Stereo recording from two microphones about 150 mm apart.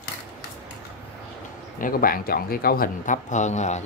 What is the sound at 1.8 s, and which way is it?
Speech, 70° left (ahead or behind).